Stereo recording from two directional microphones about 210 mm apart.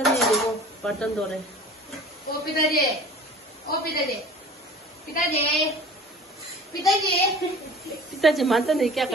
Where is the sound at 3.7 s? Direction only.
50° left (ahead or behind).